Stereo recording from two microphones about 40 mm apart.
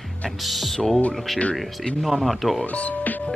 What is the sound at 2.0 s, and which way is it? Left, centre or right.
Speech, centre.